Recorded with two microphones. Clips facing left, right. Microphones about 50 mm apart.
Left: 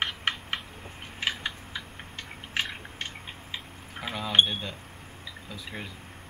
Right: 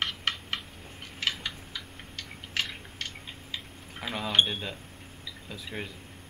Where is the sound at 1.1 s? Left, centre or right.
Left.